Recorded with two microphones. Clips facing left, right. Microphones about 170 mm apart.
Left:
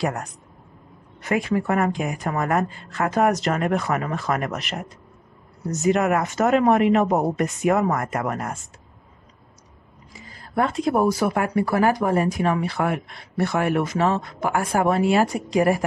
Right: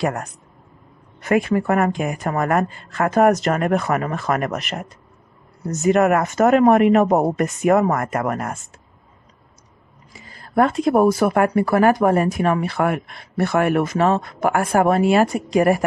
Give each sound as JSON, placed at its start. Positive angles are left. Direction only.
{"t": 0.0, "sound": "speech", "side_deg": -55}
{"t": 10.5, "sound": "speech", "side_deg": -55}